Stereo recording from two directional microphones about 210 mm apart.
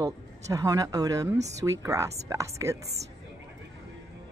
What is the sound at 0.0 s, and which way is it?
Speech, 15° right (ahead or behind).